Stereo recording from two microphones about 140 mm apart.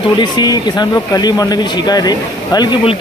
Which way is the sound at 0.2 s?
30° left (ahead or behind).